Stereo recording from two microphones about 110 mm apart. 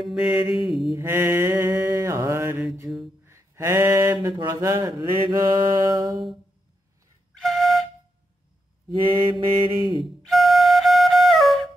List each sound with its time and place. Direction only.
0.0 s mantra: 5° right (ahead or behind)
0.9 s mantra: 20° right (ahead or behind)
3.3 s a sound: 25° right (ahead or behind)
4.8 s mantra: 40° right (ahead or behind)
7.3 s flute: centre (ahead or behind)
9.1 s mantra: 45° right (ahead or behind)
10.2 s flute: centre (ahead or behind)